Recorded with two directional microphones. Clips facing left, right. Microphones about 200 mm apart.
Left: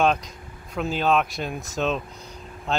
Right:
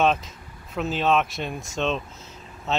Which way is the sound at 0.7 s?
Centre (ahead or behind).